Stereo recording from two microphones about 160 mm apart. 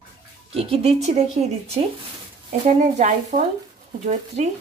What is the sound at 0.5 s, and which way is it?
Speech, 35° right (ahead or behind).